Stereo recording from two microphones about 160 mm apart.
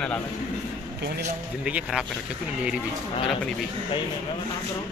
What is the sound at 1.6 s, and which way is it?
Speech, 5° right (ahead or behind).